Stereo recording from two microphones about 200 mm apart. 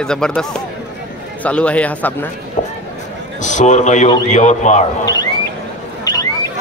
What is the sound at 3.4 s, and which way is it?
A man's voice, 35° left (ahead or behind).